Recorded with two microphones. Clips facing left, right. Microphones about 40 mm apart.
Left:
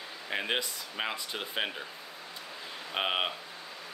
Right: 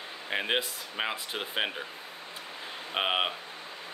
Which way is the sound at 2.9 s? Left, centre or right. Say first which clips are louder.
Right 2 dB; centre.